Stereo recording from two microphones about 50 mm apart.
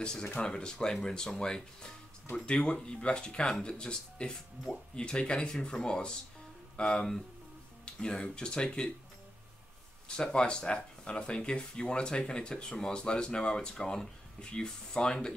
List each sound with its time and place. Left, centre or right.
0.0 s speech: centre
10.0 s speech: centre